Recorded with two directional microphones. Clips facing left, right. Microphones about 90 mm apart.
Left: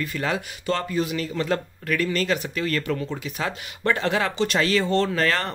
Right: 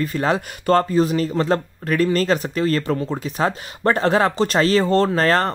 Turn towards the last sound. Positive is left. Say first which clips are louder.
# right 6 dB
turn(degrees=-35)  # may be behind; listen again after turning